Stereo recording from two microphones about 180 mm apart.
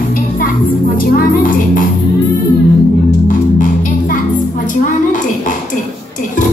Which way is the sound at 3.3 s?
50° left (ahead or behind).